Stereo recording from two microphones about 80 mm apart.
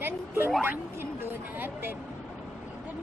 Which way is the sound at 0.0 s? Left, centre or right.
Right.